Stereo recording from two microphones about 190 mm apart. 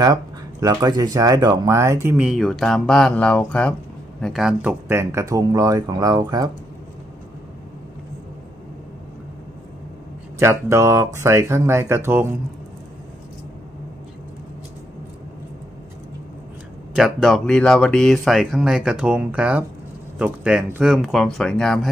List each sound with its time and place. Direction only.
0.0 s speech: 20° right (ahead or behind)
10.4 s speech: 15° right (ahead or behind)
16.9 s speech: centre (ahead or behind)